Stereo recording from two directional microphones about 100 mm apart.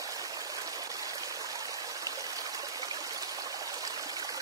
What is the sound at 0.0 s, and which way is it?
Stream, 35° right (ahead or behind).